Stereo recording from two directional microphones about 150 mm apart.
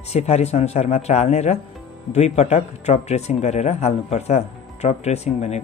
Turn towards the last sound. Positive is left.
turn(degrees=45)  # may be behind; listen again after turning